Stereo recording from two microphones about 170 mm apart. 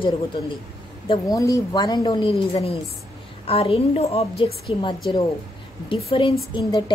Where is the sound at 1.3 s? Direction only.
20° left (ahead or behind).